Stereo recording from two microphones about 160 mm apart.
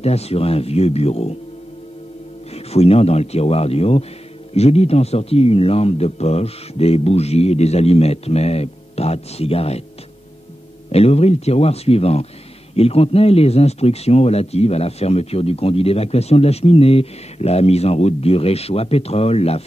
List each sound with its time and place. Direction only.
0.0 s speech: 40° left (ahead or behind)
2.5 s speech: 40° left (ahead or behind)
10.9 s speech: 40° left (ahead or behind)